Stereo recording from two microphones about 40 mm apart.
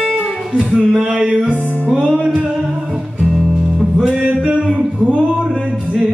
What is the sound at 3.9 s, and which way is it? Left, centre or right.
Music, centre.